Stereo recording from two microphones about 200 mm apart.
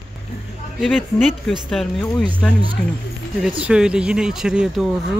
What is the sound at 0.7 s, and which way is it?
Speech, centre (ahead or behind).